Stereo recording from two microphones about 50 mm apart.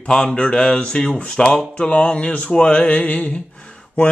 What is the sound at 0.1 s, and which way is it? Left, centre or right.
Speech, centre.